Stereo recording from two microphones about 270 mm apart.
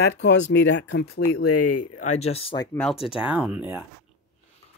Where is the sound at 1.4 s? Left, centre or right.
Left.